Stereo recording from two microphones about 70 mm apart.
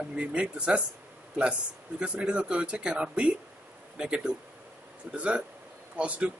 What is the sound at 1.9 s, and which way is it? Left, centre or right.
Speech, centre.